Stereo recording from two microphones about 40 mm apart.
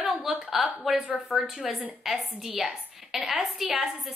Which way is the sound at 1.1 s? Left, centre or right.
Centre.